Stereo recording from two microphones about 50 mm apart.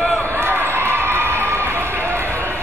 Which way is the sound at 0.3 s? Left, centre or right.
Right.